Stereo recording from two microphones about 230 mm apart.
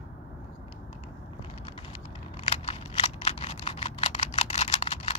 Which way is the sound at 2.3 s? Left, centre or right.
Left.